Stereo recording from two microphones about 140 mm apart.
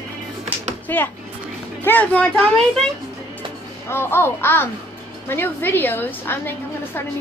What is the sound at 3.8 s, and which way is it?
A woman's voice, 15° left (ahead or behind).